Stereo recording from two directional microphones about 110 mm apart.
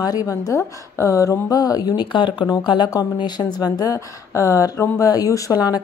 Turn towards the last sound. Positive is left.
turn(degrees=35)  # may be behind; listen again after turning